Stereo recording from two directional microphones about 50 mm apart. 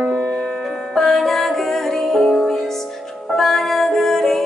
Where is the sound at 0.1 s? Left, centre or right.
Centre.